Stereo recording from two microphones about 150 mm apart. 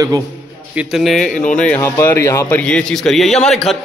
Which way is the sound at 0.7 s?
5° right (ahead or behind).